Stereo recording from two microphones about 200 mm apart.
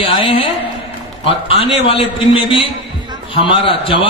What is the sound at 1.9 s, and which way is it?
A man's voice, 30° left (ahead or behind).